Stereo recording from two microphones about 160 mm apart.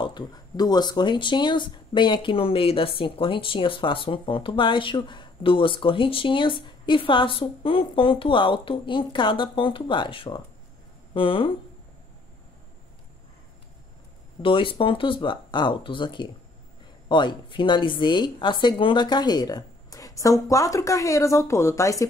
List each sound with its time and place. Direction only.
0.0 s speech: 25° left (ahead or behind)
14.4 s a woman's voice: 30° left (ahead or behind)